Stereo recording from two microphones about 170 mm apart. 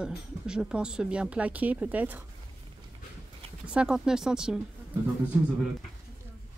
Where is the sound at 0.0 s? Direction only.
5° right (ahead or behind).